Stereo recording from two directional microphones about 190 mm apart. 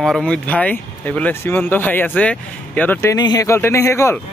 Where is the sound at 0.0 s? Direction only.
5° left (ahead or behind).